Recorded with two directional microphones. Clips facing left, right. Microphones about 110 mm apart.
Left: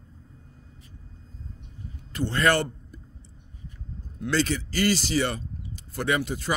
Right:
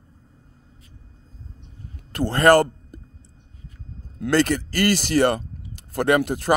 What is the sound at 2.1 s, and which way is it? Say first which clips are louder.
Speech: right 8 dB; 50° right (ahead or behind).